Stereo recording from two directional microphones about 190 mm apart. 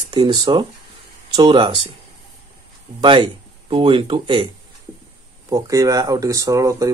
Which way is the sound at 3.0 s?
25° right (ahead or behind).